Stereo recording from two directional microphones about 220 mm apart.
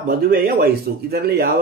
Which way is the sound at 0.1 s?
40° right (ahead or behind).